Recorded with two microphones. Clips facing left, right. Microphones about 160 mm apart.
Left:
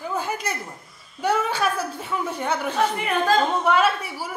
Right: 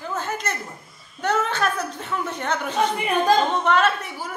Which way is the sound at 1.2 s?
10° left (ahead or behind).